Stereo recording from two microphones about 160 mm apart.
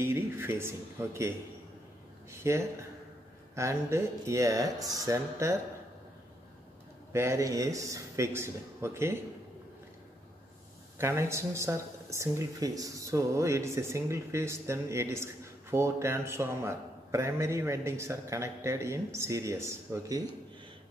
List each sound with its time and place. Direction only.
0.0 s a man's voice: 15° right (ahead or behind)
2.3 s a man's voice: 15° right (ahead or behind)
7.1 s a man's voice: 15° right (ahead or behind)
11.0 s a man's voice: 15° right (ahead or behind)